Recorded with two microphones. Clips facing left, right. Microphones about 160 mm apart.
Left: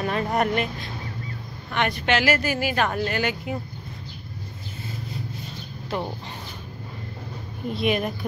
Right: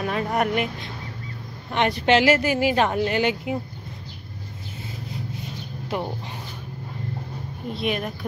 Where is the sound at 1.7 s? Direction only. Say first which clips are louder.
Right 4 dB; 30° right (ahead or behind).